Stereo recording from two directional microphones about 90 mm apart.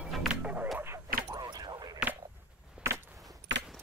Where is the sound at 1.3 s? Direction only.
50° right (ahead or behind).